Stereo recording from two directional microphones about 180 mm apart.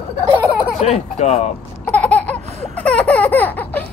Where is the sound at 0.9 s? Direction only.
40° left (ahead or behind).